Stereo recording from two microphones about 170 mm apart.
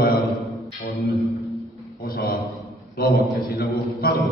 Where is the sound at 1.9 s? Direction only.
65° left (ahead or behind).